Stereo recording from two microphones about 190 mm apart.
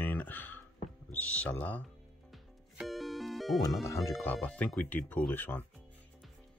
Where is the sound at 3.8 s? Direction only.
15° left (ahead or behind).